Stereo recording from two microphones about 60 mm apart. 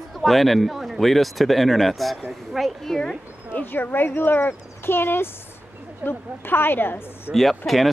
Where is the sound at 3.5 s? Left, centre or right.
Left.